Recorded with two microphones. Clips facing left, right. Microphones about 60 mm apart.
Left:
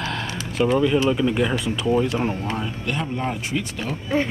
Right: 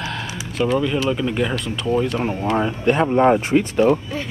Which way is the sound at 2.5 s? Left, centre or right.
Right.